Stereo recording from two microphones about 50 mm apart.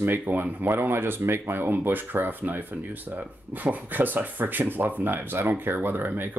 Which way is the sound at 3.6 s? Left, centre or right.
Right.